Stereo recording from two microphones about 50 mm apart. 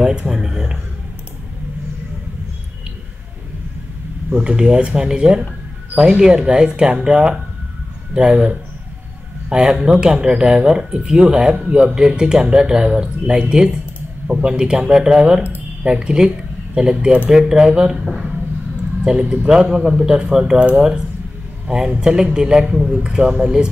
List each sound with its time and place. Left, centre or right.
0.0 s speech: right
0.3 s a sound: centre
4.3 s speech: centre
18.0 s speech: centre
19.0 s speech: centre
20.5 s speech: right